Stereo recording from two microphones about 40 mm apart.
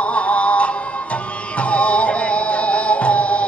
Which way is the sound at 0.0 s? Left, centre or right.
Left.